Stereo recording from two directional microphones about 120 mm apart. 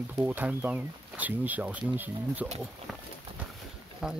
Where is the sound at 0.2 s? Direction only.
15° right (ahead or behind).